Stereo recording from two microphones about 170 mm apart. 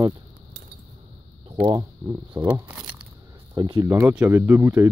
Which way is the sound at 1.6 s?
25° right (ahead or behind).